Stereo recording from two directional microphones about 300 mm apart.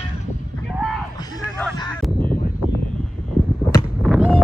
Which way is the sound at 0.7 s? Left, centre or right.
Centre.